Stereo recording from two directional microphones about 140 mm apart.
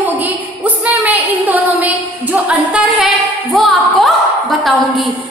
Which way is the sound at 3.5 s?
Centre (ahead or behind).